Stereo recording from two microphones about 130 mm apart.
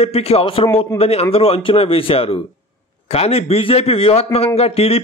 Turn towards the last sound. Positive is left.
turn(degrees=50)  # may be behind; listen again after turning